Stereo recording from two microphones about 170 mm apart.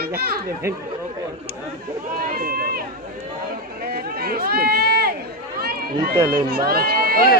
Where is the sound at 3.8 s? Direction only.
60° right (ahead or behind).